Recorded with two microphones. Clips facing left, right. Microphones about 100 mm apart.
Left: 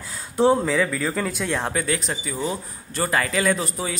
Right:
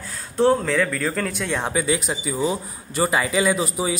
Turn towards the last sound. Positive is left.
turn(degrees=-10)  # may be behind; listen again after turning